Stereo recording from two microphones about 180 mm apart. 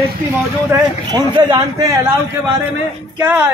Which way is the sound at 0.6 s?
20° right (ahead or behind).